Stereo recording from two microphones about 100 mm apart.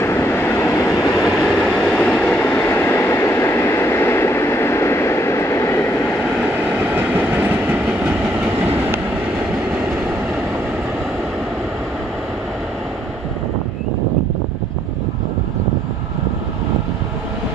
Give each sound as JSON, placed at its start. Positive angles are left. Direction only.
{"t": 0.0, "sound": "train", "side_deg": 25}
{"t": 0.9, "sound": "train", "side_deg": -5}
{"t": 1.6, "sound": "train", "side_deg": 10}
{"t": 7.0, "sound": "train", "side_deg": -20}